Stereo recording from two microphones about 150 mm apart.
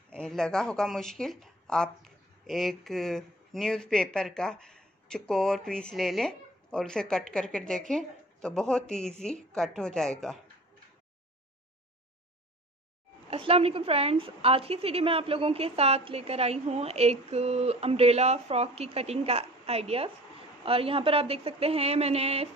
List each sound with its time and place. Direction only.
0.1 s a woman's voice: 5° left (ahead or behind)
13.3 s a woman's voice: 40° right (ahead or behind)